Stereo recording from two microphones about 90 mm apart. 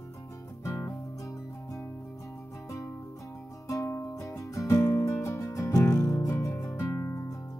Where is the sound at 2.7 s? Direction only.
35° left (ahead or behind).